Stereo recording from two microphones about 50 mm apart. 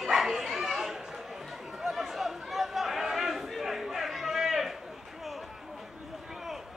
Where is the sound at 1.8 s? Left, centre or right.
Centre.